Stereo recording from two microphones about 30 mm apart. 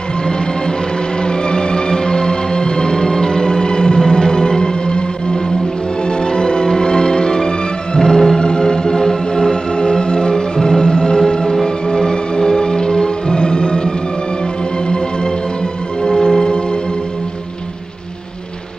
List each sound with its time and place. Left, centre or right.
1.2 s music: left
16.0 s music: left